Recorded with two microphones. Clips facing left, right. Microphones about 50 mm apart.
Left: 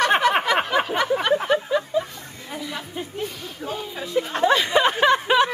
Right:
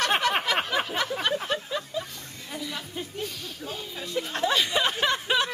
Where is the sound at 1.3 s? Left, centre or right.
Left.